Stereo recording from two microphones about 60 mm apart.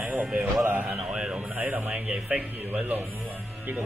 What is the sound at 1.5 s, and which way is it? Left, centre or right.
A man's voice, right.